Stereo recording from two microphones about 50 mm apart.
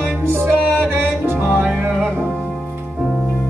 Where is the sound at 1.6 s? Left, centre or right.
Right.